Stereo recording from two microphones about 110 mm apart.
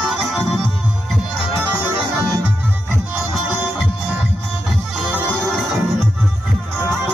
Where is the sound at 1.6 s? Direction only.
20° right (ahead or behind).